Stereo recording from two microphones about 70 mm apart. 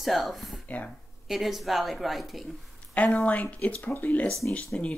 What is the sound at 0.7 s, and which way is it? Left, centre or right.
Speech, left.